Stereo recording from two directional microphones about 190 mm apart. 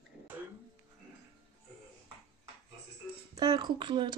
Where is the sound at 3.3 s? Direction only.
20° right (ahead or behind).